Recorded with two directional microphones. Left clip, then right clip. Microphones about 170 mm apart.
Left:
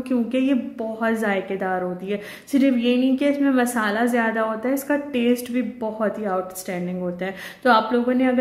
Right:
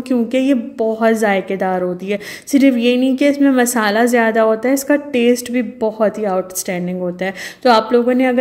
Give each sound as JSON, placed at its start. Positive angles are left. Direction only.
{"t": 0.1, "sound": "a woman's voice", "side_deg": -45}